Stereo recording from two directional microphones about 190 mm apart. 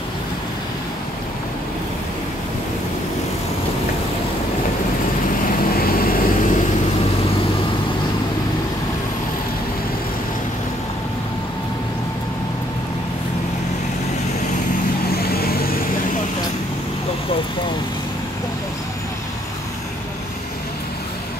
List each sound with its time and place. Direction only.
5.7 s vehicle: 50° left (ahead or behind)
15.1 s vehicle: 55° left (ahead or behind)